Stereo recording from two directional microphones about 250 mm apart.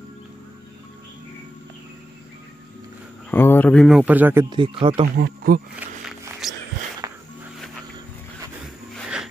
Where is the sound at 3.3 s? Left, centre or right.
Centre; by 5.1 s right.